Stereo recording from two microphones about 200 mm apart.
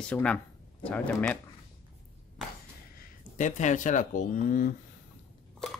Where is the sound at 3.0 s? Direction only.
40° left (ahead or behind).